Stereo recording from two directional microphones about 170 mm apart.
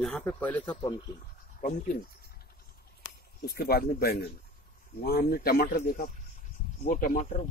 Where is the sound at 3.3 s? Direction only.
65° left (ahead or behind); by 7.4 s 45° left (ahead or behind).